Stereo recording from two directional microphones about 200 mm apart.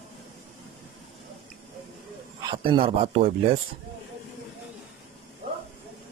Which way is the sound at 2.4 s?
25° right (ahead or behind).